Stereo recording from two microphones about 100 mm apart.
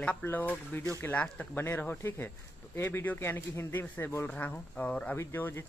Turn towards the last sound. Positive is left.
turn(degrees=25)  # may be behind; listen again after turning